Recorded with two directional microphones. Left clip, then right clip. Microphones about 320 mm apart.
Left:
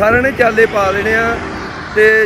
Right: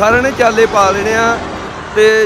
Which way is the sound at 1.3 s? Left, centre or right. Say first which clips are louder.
Right 1 dB; right.